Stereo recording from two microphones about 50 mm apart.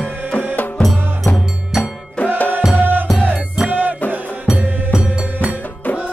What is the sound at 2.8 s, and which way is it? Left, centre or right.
Music, right.